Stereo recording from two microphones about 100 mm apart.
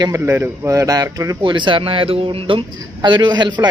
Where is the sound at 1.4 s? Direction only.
50° right (ahead or behind).